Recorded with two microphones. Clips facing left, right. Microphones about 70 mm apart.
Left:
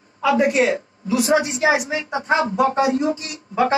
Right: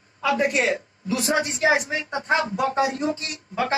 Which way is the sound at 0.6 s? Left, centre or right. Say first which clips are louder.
Left 4 dB; left.